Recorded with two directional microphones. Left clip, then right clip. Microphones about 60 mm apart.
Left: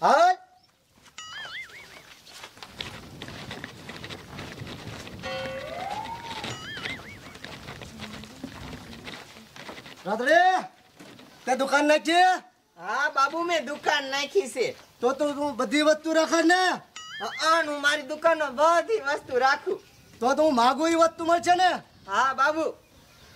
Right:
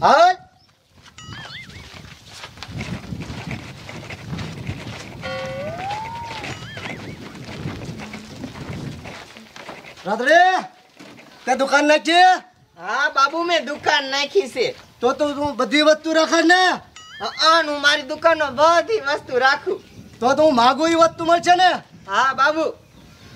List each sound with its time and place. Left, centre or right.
0.0 s speech: right
1.1 s wild animals: centre
8.4 s a sound: centre
10.0 s speech: right
16.9 s goat: centre
17.2 s speech: right